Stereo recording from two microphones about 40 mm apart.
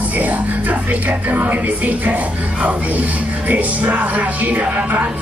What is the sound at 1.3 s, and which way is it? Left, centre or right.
Speech, right.